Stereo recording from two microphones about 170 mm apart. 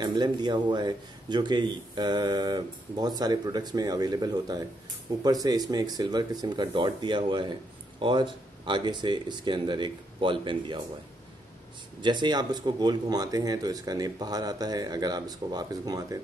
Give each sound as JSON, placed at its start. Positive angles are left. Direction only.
{"t": 0.0, "sound": "speech", "side_deg": -25}
{"t": 12.0, "sound": "speech", "side_deg": -25}